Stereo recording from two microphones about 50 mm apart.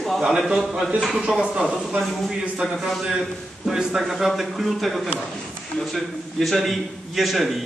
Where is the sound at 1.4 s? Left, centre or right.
Centre.